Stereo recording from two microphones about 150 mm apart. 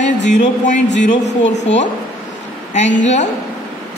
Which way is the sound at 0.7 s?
55° left (ahead or behind).